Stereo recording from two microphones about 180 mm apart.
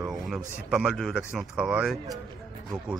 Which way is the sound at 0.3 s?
5° right (ahead or behind).